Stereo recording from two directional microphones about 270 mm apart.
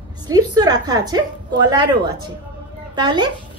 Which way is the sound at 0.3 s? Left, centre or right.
Centre.